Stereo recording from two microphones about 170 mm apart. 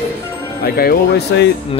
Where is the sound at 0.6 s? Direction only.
65° left (ahead or behind).